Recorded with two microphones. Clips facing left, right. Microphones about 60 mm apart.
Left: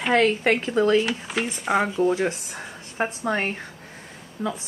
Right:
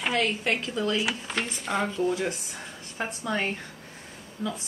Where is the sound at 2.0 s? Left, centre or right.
Left.